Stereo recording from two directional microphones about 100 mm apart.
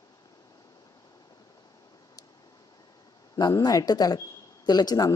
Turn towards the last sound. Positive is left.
turn(degrees=40)  # may be behind; listen again after turning